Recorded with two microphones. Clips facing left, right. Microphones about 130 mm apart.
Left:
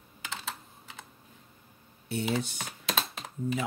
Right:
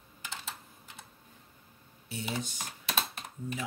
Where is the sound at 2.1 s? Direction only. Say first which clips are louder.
Left 6 dB; 60° left (ahead or behind); by 3.7 s 90° left.